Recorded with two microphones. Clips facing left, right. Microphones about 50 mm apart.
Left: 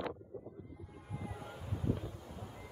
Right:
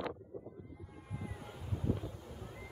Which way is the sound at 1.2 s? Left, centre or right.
Centre.